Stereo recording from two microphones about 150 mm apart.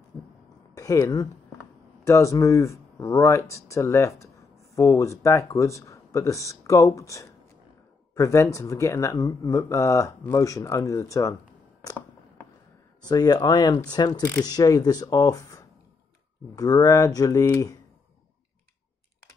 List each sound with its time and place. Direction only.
0.7 s speech: 20° left (ahead or behind)
13.0 s speech: 25° left (ahead or behind)